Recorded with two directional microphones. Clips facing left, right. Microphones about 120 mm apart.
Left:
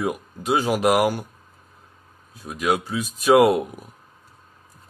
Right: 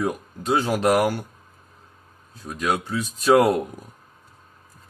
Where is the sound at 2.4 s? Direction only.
10° left (ahead or behind).